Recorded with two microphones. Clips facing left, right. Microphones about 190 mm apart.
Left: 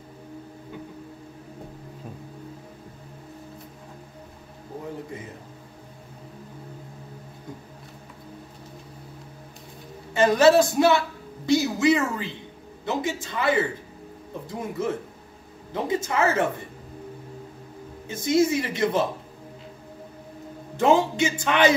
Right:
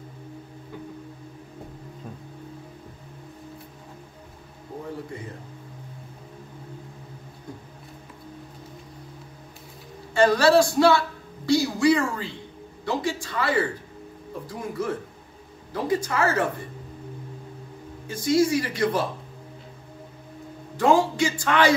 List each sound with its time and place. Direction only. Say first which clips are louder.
10.1 s speech: left 1 dB; 20° left (ahead or behind)
15.7 s speech: even; 25° left (ahead or behind)
18.0 s speech: even; 25° left (ahead or behind)
20.7 s speech: even; 20° left (ahead or behind)